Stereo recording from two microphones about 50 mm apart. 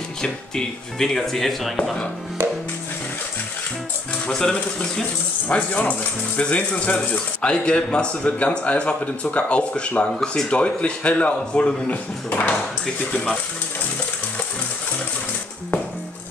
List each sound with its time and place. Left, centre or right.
0.2 s speech: centre
4.3 s speech: centre
5.5 s speech: left
12.8 s speech: centre